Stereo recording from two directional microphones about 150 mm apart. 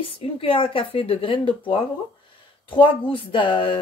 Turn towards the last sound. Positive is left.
turn(degrees=35)  # may be behind; listen again after turning